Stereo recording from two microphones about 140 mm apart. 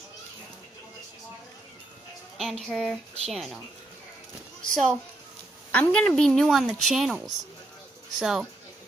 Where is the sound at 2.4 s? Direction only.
Centre (ahead or behind).